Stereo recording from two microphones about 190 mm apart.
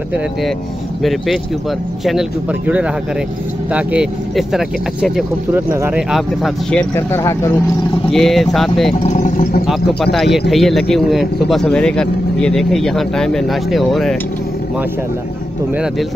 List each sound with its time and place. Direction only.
1.0 s a man's voice: centre (ahead or behind)
8.1 s a man's voice: centre (ahead or behind)
9.0 s speech: 40° left (ahead or behind)
9.7 s a man's voice: centre (ahead or behind)
15.7 s a man's voice: 5° right (ahead or behind)